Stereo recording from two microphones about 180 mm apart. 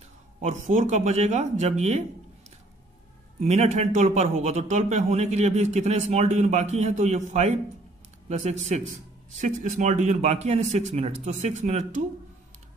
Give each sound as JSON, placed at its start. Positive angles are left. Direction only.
{"t": 0.4, "sound": "a man's voice", "side_deg": -40}
{"t": 3.3, "sound": "a man's voice", "side_deg": -35}